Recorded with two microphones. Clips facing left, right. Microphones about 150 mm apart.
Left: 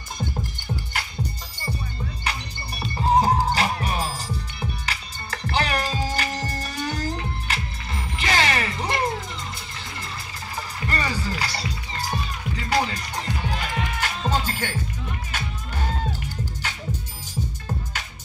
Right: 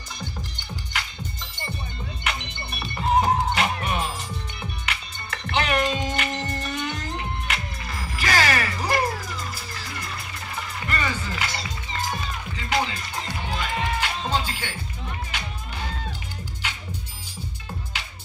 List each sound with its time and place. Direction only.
2.2 s music: 35° left (ahead or behind)
10.5 s music: 35° left (ahead or behind)